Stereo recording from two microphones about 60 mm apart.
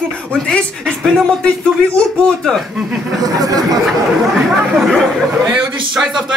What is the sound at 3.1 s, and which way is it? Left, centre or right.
Speech, right.